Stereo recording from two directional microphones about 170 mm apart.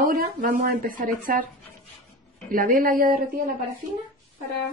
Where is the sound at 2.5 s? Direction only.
55° right (ahead or behind).